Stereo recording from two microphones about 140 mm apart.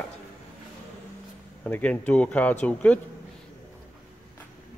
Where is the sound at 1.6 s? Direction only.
10° left (ahead or behind).